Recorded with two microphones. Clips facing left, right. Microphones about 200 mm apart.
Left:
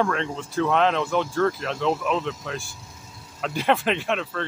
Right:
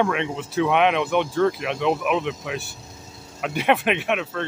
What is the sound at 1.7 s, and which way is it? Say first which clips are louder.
Speech: right 2 dB; 15° right (ahead or behind).